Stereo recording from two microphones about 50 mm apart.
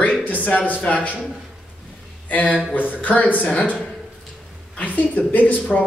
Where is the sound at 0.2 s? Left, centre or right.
Left.